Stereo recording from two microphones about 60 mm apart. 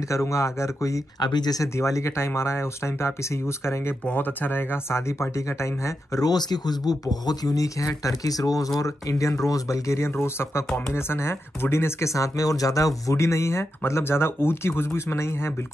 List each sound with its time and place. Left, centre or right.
0.1 s speech: left
4.1 s speech: left
6.8 s speech: left